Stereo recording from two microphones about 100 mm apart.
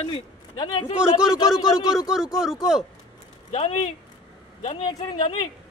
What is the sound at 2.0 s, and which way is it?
Speech, 5° right (ahead or behind).